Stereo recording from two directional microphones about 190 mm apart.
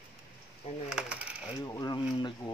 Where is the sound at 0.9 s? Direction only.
5° right (ahead or behind).